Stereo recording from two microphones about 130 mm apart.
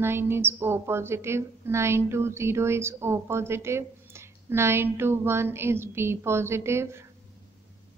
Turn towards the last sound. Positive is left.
turn(degrees=-20)  # may be behind; listen again after turning